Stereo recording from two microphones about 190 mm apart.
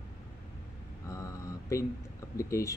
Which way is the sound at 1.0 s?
15° left (ahead or behind).